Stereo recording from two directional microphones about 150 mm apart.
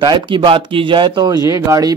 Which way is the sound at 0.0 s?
30° right (ahead or behind).